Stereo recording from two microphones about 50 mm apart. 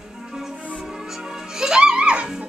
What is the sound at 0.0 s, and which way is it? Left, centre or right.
Music, centre.